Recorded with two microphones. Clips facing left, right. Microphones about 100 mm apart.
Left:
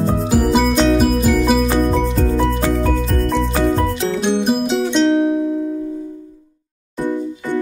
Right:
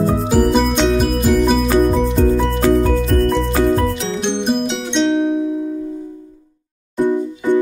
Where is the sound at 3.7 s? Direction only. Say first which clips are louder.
Even; centre (ahead or behind).